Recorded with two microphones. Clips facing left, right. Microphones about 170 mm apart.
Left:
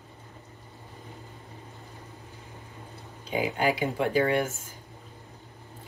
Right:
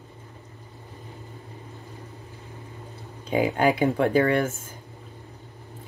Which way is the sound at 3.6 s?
50° right (ahead or behind).